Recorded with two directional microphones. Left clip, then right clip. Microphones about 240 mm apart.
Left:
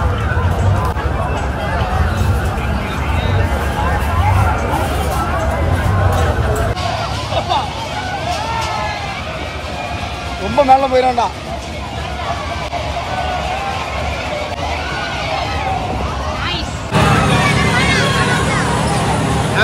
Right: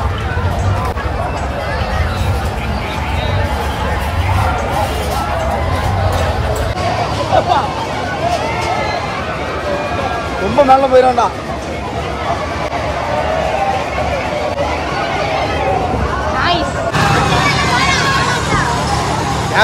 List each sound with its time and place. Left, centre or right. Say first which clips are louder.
10.6 s speech: right 2 dB; left